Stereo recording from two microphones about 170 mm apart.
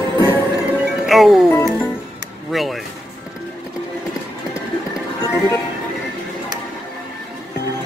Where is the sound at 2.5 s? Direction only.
Centre (ahead or behind).